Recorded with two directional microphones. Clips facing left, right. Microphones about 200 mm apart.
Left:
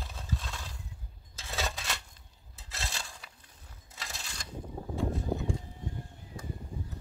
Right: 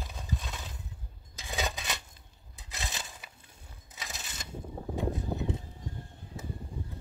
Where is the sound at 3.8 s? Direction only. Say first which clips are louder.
Right 1 dB; 20° right (ahead or behind).